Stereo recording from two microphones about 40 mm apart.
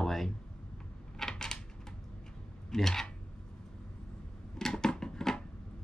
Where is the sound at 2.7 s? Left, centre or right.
Centre.